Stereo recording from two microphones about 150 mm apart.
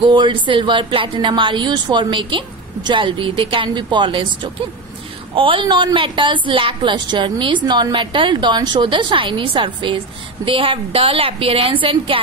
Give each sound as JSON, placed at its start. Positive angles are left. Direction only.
{"t": 0.0, "sound": "speech", "side_deg": -35}